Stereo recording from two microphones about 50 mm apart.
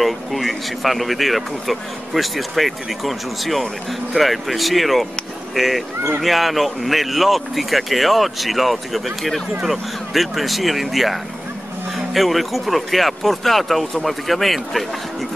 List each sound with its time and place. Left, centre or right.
0.0 s speech: centre